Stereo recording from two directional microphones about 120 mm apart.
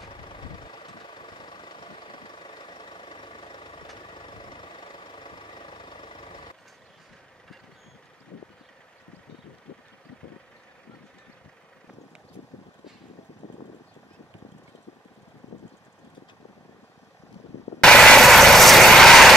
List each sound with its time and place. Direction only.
0.0 s vehicle: 45° left (ahead or behind)
17.7 s vehicle: 5° left (ahead or behind)